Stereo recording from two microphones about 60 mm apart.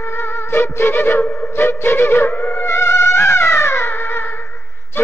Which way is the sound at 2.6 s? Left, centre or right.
Left.